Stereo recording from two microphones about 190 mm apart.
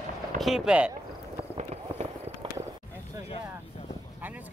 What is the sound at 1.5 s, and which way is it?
Fireworks, 35° right (ahead or behind).